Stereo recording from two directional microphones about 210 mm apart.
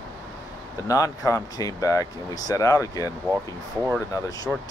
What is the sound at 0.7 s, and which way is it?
Speech, 15° left (ahead or behind).